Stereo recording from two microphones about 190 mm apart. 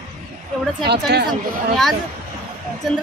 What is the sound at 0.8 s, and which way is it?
Speech, 60° right (ahead or behind).